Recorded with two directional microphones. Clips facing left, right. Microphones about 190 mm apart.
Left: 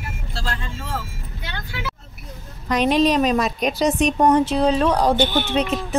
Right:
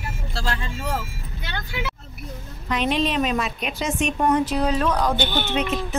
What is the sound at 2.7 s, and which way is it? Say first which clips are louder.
A woman's voice: left 5 dB; 40° left (ahead or behind).